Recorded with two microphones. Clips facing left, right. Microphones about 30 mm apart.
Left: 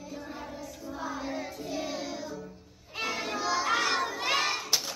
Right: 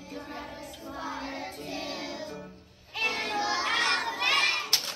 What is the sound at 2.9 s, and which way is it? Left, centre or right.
Crowd, right.